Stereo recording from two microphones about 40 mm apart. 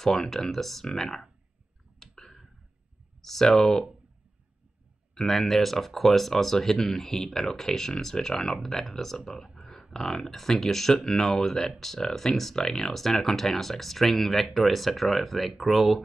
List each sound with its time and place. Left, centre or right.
0.0 s speech: centre
2.0 s a sound: centre
3.2 s speech: centre
5.1 s speech: centre
9.6 s a sound: centre
9.9 s speech: centre